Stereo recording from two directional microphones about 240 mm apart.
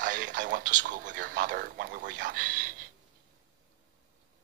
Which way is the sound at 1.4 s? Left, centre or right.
Right.